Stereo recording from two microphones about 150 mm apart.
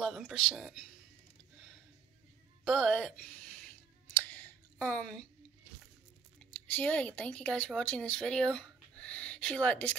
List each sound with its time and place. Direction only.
0.0 s speech: centre (ahead or behind)
2.6 s speech: centre (ahead or behind)
4.2 s clicking: 10° left (ahead or behind)
6.7 s speech: 10° left (ahead or behind)